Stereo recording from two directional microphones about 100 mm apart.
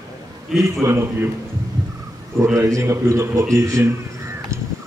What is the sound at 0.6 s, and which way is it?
Speech, 30° right (ahead or behind).